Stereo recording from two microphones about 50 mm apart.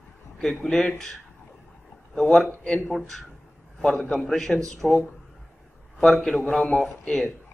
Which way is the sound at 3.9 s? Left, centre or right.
Centre.